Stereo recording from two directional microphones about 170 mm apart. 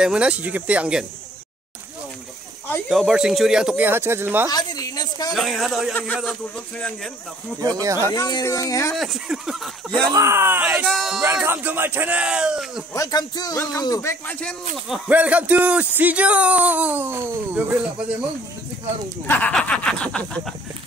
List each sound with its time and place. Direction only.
0.0 s speech: 5° right (ahead or behind)
2.9 s speech: 5° right (ahead or behind)
4.5 s a sound: 20° left (ahead or behind)
5.3 s speech: centre (ahead or behind)
7.8 s speech: 20° right (ahead or behind)
8.1 s a man's voice: 25° left (ahead or behind)
8.9 s speech: centre (ahead or behind)
9.8 s speech: 25° right (ahead or behind); by 11.2 s centre (ahead or behind)
11.3 s speech: 10° right (ahead or behind)
12.9 s a man's voice: 20° left (ahead or behind)
15.0 s speech: 10° right (ahead or behind)
19.2 s speech: 10° left (ahead or behind)